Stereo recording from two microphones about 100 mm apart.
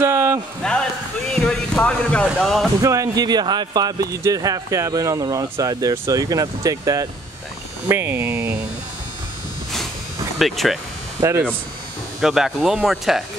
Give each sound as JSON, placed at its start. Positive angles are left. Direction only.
{"t": 0.0, "sound": "a sound", "side_deg": -30}
{"t": 0.6, "sound": "a sound", "side_deg": 10}
{"t": 1.5, "sound": "speech", "side_deg": 10}
{"t": 2.2, "sound": "speech", "side_deg": 0}
{"t": 2.8, "sound": "speech", "side_deg": -35}
{"t": 7.9, "sound": "speech", "side_deg": -25}
{"t": 10.4, "sound": "speech", "side_deg": 0}
{"t": 11.1, "sound": "speech", "side_deg": -30}
{"t": 12.2, "sound": "speech", "side_deg": -5}